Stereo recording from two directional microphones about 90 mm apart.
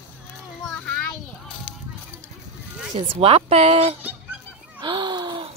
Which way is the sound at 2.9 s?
90° right.